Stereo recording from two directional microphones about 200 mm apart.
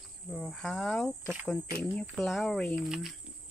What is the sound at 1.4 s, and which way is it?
Speech, 5° left (ahead or behind).